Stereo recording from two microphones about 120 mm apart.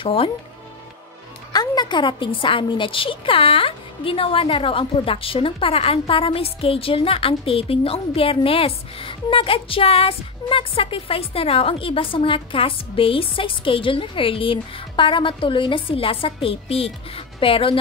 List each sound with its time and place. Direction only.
0.0 s a woman's voice: 50° left (ahead or behind)
1.5 s a woman's voice: 35° left (ahead or behind)